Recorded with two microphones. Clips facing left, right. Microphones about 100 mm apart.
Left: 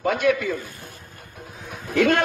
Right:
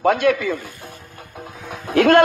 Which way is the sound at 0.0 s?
90° right.